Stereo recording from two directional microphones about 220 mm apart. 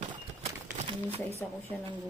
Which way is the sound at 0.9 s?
25° right (ahead or behind).